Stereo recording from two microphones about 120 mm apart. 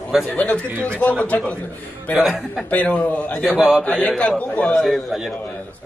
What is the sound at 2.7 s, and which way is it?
A man's voice, 10° left (ahead or behind).